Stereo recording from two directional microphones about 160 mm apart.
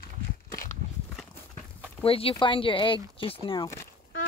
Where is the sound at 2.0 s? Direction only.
35° left (ahead or behind); by 3.9 s 20° left (ahead or behind).